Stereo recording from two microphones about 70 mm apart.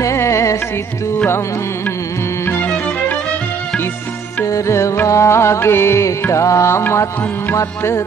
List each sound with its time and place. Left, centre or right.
0.0 s music: left
2.6 s music: left
4.5 s music: left